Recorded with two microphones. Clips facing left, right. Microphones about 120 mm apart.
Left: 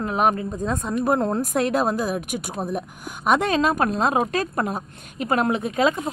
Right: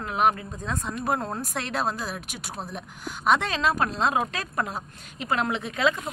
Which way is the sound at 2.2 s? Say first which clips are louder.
Left 9 dB; 50° left (ahead or behind).